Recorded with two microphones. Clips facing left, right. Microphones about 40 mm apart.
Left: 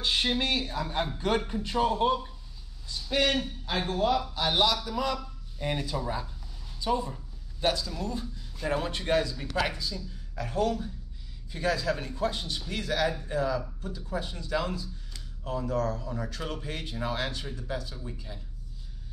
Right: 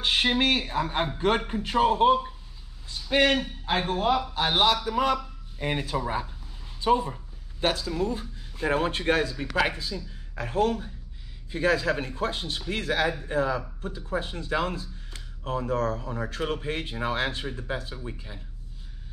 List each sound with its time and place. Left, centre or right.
0.0 s a man's voice: right